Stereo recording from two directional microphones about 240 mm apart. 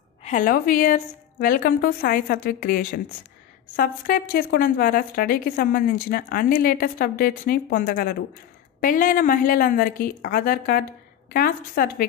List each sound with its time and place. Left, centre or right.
0.2 s a woman's voice: left